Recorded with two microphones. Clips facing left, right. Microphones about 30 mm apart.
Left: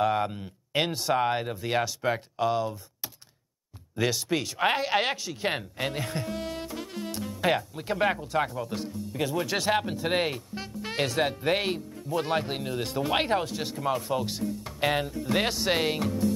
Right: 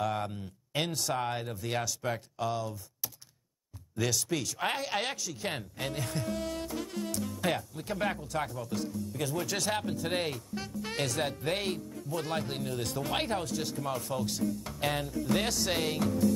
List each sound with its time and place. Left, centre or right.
0.0 s speech: left